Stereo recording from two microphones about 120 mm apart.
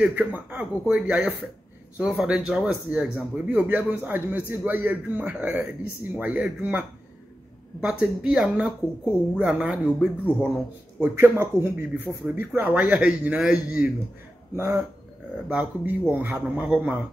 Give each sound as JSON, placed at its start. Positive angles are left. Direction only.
{"t": 0.0, "sound": "speech", "side_deg": -15}
{"t": 9.8, "sound": "speech", "side_deg": 10}
{"t": 11.0, "sound": "speech", "side_deg": -20}
{"t": 14.5, "sound": "speech", "side_deg": -20}